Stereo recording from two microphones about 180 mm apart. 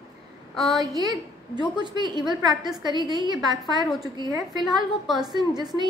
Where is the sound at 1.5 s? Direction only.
25° right (ahead or behind).